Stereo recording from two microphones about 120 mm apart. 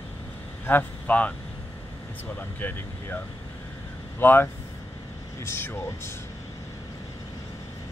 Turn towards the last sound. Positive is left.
turn(degrees=20)  # may be behind; listen again after turning